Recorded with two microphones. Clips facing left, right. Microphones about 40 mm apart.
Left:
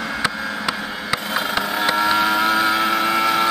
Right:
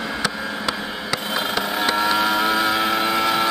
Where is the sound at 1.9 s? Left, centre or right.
Centre.